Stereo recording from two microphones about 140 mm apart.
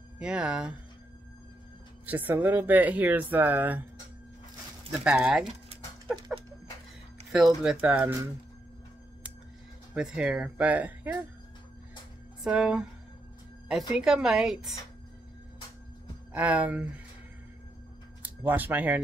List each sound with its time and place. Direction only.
0.2 s speech: 5° right (ahead or behind)
2.0 s speech: 15° right (ahead or behind)
5.0 s speech: 5° right (ahead or behind)
6.1 s a sound: 30° right (ahead or behind)
7.3 s speech: 5° right (ahead or behind)
9.9 s speech: 5° right (ahead or behind)
12.4 s speech: 5° right (ahead or behind)
16.3 s speech: 10° right (ahead or behind)
18.2 s speech: 10° right (ahead or behind)